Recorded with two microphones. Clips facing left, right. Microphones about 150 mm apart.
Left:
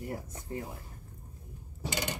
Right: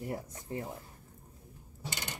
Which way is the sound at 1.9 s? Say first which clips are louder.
Left 8 dB; 90° left.